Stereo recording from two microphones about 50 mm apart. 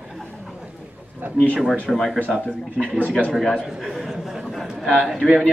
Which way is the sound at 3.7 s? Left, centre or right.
Centre.